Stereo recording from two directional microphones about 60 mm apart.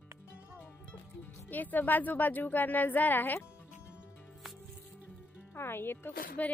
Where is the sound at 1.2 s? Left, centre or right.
Left.